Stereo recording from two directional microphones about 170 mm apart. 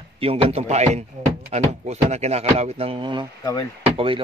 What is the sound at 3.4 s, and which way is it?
Speech, 20° left (ahead or behind).